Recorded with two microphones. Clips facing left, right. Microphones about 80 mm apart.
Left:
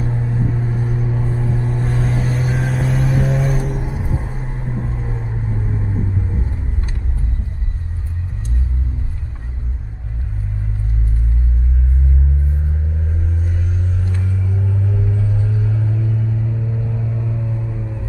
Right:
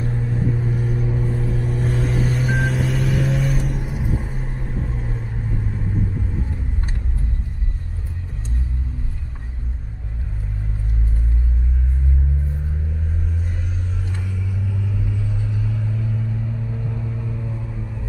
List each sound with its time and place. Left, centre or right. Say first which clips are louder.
0.0 s vehicle: left 2 dB; centre
1.9 s vehicle: even; centre
3.0 s vehicle: left 3 dB; left
3.3 s vehicle: left 3 dB; centre
4.4 s vehicle: left 3 dB; centre
14.5 s vehicle: left 5 dB; left
15.6 s vehicle: left 4 dB; left
16.0 s a sound: left 4 dB; centre